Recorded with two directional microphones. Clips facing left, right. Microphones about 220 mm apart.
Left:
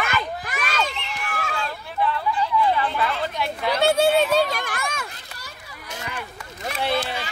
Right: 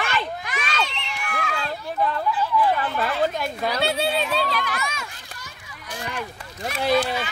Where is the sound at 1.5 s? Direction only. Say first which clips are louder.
Right 1 dB; 40° right (ahead or behind).